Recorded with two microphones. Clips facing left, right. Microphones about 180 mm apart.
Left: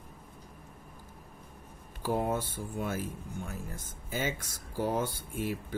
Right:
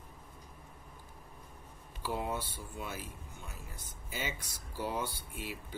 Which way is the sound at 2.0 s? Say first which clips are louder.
Left 6 dB; 45° left (ahead or behind).